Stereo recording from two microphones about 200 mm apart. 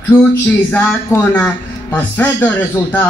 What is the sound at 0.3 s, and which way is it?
Speech, 10° left (ahead or behind).